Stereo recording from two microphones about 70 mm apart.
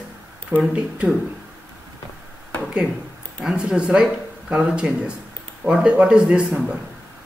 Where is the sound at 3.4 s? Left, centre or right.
Centre.